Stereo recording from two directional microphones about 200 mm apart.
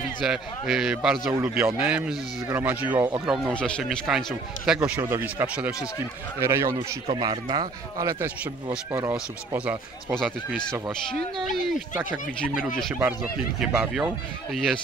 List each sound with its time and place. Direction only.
0.2 s speech: 5° right (ahead or behind)
4.7 s speech: 10° right (ahead or behind)
10.1 s speech: centre (ahead or behind)